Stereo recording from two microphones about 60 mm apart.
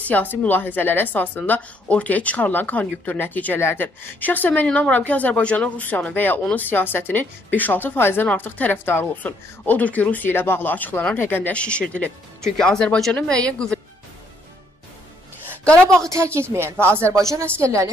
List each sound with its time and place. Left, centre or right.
0.0 s a woman's voice: left
3.5 s a woman's voice: left
4.6 s a woman's voice: centre
4.9 s a woman's voice: left
9.1 s a woman's voice: left
11.5 s a woman's voice: centre
15.6 s a woman's voice: centre
16.0 s a woman's voice: right
16.8 s speech: right
17.1 s a woman's voice: right